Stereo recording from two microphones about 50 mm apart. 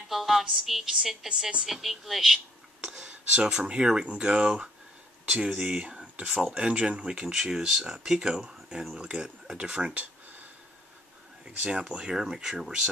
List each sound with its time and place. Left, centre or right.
0.1 s a woman's voice: centre
1.3 s speech: centre
5.9 s a sound: right
6.2 s speech: centre
7.2 s speech: centre
11.4 s speech: right